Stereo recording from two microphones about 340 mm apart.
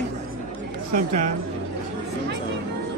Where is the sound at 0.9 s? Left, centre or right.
Right.